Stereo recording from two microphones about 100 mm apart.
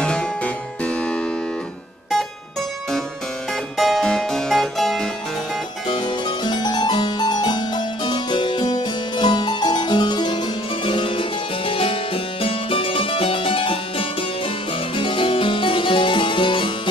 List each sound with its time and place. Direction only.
0.0 s harpsichord: 10° left (ahead or behind)
3.7 s harpsichord: centre (ahead or behind)
5.9 s harpsichord: 50° left (ahead or behind)